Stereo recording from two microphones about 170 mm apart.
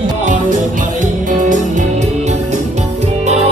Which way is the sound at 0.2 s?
50° right (ahead or behind).